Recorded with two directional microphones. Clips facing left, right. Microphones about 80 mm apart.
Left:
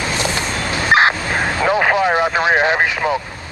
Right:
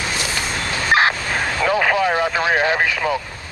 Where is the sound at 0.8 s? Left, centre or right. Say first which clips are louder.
Left 3 dB; left.